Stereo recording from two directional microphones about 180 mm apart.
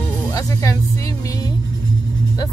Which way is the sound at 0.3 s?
20° left (ahead or behind).